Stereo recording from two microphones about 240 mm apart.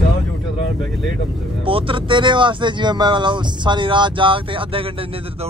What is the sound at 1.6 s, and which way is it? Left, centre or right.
Speech, right.